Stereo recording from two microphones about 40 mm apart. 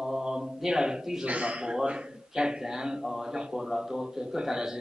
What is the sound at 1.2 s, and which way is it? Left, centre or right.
Speech, right.